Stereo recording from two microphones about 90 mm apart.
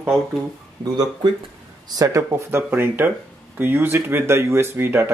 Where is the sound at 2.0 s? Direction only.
35° right (ahead or behind).